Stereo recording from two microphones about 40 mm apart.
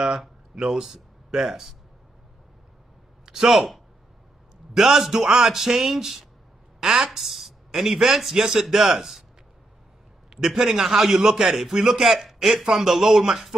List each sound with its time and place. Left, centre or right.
0.6 s a man's voice: centre
1.5 s speech: centre
3.3 s a man's voice: centre
10.3 s a man's voice: centre